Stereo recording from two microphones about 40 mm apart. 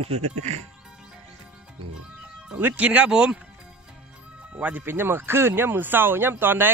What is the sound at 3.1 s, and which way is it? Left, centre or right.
Speech, right.